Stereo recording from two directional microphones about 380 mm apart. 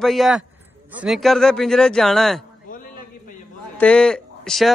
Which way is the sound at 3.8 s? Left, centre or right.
Centre.